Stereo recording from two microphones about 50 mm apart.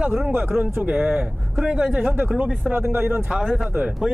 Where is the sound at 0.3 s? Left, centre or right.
Right.